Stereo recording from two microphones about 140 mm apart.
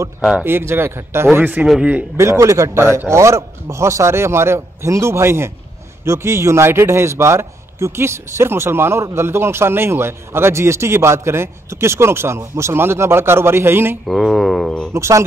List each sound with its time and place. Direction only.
0.4 s speech: 15° right (ahead or behind)
2.1 s a man's voice: 20° right (ahead or behind)
14.0 s a sound: centre (ahead or behind)
15.0 s a man's voice: 20° right (ahead or behind)